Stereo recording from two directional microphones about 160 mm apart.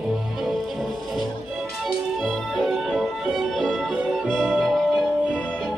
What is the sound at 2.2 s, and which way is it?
Music, centre (ahead or behind).